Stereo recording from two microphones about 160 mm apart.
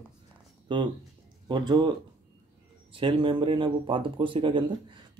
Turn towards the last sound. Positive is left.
turn(degrees=-30)  # may be behind; listen again after turning